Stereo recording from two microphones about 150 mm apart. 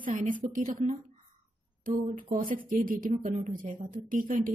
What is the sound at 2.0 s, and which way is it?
Speech, 55° right (ahead or behind).